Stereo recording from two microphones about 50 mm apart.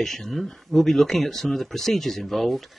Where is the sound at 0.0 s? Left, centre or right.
Centre.